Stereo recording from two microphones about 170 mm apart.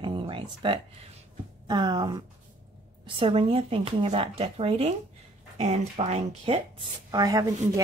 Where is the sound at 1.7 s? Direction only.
25° right (ahead or behind).